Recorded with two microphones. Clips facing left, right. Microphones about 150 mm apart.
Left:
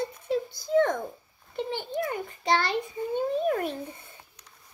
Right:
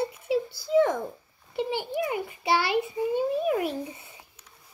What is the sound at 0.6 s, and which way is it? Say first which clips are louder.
A woman's voice: right 1 dB; 5° right (ahead or behind).